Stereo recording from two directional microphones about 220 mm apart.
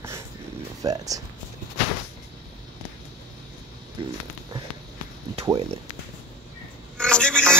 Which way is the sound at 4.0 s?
20° right (ahead or behind).